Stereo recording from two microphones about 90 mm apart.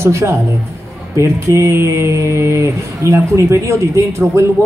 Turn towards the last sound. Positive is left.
turn(degrees=-35)  # may be behind; listen again after turning